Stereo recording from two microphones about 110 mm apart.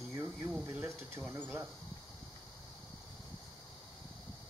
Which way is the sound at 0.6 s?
20° right (ahead or behind).